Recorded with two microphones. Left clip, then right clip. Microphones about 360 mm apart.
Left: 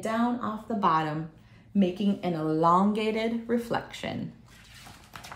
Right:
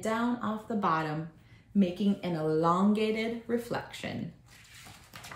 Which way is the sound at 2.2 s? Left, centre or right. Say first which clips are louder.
Left 4 dB; centre.